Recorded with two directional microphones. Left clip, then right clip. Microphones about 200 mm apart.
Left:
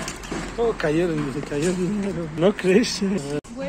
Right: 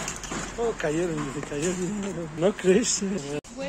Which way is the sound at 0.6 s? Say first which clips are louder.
Left 5 dB; centre (ahead or behind).